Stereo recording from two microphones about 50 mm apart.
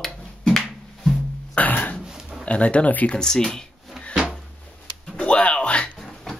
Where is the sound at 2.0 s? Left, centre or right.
Centre.